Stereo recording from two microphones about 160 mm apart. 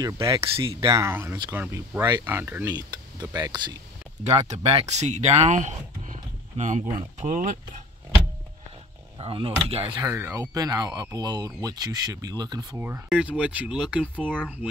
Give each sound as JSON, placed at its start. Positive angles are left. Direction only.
{"t": 0.0, "sound": "speech", "side_deg": -20}
{"t": 2.7, "sound": "speech", "side_deg": -25}
{"t": 4.2, "sound": "speech", "side_deg": -45}
{"t": 9.2, "sound": "speech", "side_deg": -35}
{"t": 9.9, "sound": "speech", "side_deg": -15}
{"t": 12.7, "sound": "speech", "side_deg": -15}